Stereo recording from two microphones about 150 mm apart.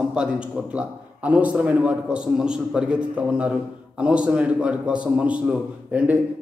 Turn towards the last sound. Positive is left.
turn(degrees=-10)  # may be behind; listen again after turning